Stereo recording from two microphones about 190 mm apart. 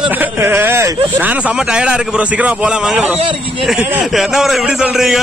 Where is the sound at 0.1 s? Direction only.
10° right (ahead or behind).